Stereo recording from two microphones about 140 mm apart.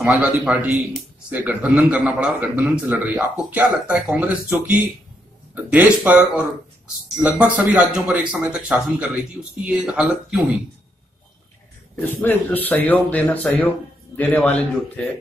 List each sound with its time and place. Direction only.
0.1 s speech: 10° right (ahead or behind)
11.9 s speech: 10° left (ahead or behind)